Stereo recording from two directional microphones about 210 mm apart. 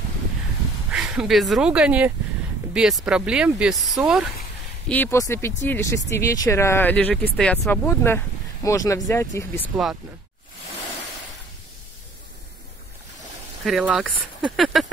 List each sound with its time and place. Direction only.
0.9 s speech: 5° right (ahead or behind)
4.8 s speech: 10° left (ahead or behind)
13.7 s speech: centre (ahead or behind)